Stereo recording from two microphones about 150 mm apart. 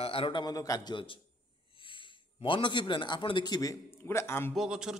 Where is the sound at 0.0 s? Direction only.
40° left (ahead or behind); by 4.6 s 15° left (ahead or behind).